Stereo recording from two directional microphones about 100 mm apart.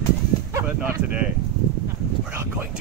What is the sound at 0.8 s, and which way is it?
Speech, 10° right (ahead or behind).